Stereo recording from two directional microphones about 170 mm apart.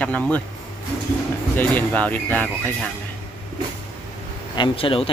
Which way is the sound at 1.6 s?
10° left (ahead or behind).